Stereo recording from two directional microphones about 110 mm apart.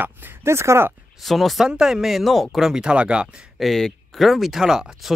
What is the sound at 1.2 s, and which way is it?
Speech, centre (ahead or behind).